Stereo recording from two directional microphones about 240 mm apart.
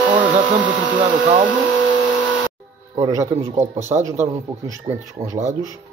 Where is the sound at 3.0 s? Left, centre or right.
Centre.